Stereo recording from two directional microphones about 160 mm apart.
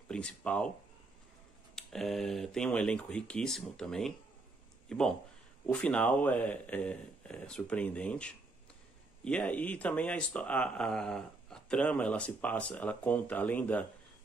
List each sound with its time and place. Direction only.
0.1 s speech: 5° left (ahead or behind)
1.8 s speech: centre (ahead or behind)